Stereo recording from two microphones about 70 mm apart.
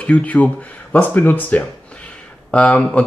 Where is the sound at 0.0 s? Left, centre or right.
Centre.